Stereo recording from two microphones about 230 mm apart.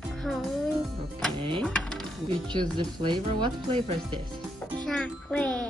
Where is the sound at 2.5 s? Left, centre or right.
Centre.